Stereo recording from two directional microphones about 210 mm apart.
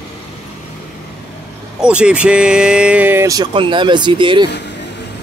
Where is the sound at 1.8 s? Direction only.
5° right (ahead or behind); by 4.5 s 25° right (ahead or behind).